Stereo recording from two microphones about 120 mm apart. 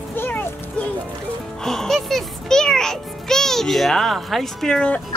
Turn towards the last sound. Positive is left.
turn(degrees=5)  # may be behind; listen again after turning